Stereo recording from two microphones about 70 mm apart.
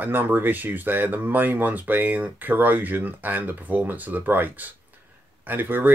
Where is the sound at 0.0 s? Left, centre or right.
Right.